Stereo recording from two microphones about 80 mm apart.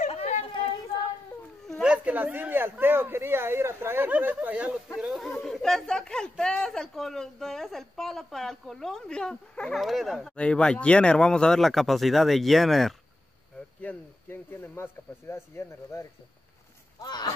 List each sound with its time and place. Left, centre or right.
1.8 s a sound: centre
2.1 s speech: right
4.9 s speech: centre
9.8 s speech: centre
10.3 s speech: centre
13.7 s speech: left
17.0 s speech: left